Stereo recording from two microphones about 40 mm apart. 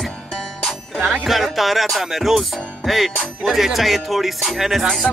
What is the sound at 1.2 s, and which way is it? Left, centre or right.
Speech, centre.